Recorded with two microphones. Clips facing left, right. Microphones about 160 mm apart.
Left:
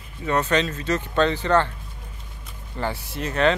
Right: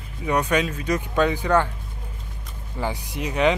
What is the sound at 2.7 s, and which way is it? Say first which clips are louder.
Speech: even; 15° right (ahead or behind).